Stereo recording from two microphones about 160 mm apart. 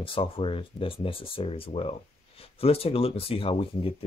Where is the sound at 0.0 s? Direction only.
35° left (ahead or behind).